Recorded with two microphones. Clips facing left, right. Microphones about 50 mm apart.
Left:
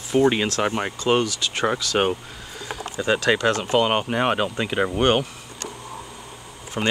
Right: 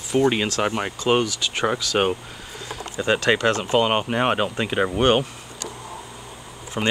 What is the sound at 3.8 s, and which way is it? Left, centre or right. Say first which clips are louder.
Speech: even; centre.